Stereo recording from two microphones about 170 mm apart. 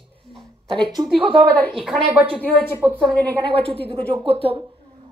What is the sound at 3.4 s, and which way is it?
Speech, 35° right (ahead or behind).